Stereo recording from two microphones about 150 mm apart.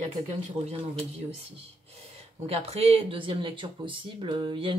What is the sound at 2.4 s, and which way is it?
Speech, 45° right (ahead or behind).